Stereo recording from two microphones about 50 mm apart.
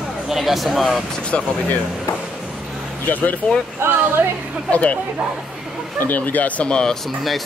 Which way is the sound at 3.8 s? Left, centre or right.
Right.